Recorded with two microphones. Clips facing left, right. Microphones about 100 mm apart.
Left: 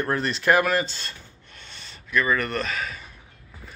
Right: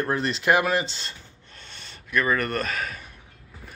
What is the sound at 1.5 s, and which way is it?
Gasp, 40° right (ahead or behind).